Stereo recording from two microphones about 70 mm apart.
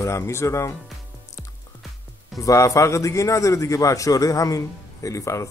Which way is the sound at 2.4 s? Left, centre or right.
Left.